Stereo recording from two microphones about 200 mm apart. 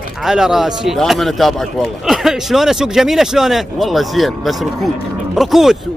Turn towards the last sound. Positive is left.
turn(degrees=0)  # may be behind; listen again after turning